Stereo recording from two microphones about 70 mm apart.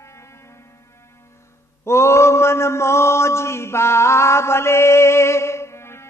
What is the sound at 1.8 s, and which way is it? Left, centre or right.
Mantra, left.